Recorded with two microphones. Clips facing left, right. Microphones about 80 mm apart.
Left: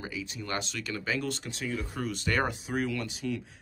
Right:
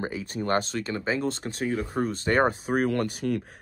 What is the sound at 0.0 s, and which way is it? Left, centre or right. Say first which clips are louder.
Speech: right 8 dB; right.